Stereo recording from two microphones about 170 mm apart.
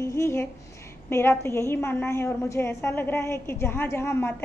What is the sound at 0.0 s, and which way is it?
A woman's voice, 15° left (ahead or behind).